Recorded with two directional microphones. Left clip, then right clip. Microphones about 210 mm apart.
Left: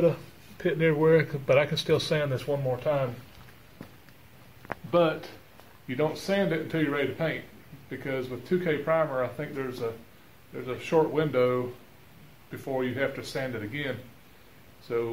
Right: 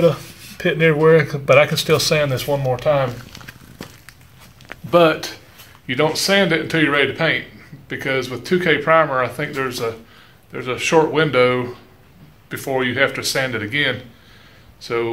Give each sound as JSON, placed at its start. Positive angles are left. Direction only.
{"t": 0.0, "sound": "speech", "side_deg": -5}
{"t": 4.6, "sound": "a sound", "side_deg": -25}
{"t": 5.9, "sound": "speech", "side_deg": -10}